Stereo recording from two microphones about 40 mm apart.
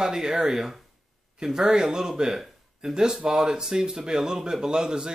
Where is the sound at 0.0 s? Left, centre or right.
Centre.